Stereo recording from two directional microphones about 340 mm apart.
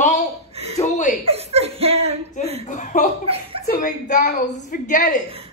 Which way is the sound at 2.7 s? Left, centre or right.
Left.